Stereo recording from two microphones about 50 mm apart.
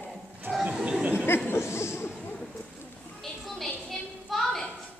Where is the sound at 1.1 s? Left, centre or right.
Left.